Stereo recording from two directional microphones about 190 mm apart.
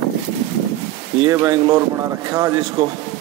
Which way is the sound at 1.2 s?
15° right (ahead or behind).